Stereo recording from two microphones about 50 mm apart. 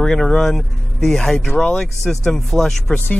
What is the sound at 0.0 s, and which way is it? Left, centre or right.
Speech, centre.